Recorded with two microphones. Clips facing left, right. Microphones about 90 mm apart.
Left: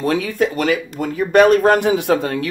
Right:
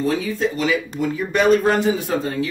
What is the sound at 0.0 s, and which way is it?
A man's voice, 65° left (ahead or behind).